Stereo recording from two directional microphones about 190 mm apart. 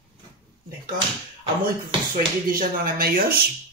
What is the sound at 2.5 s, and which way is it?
Speech, 50° right (ahead or behind).